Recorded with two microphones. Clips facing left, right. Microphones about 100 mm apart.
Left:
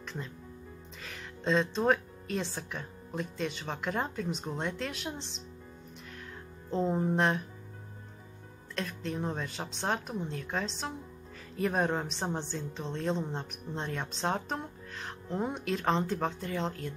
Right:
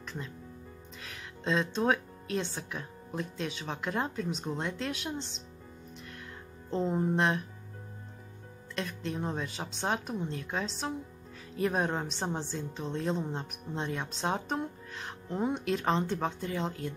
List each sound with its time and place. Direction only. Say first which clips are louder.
0.0 s music: even; centre (ahead or behind)
0.9 s a woman's voice: left 1 dB; centre (ahead or behind)
6.7 s a woman's voice: even; centre (ahead or behind)
8.7 s a woman's voice: even; centre (ahead or behind)